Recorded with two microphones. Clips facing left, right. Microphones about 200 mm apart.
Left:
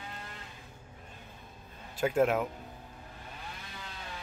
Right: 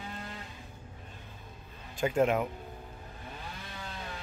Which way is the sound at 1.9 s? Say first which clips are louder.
Even; 5° left (ahead or behind).